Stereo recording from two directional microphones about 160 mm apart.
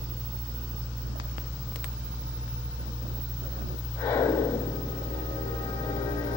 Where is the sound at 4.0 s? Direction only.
20° left (ahead or behind).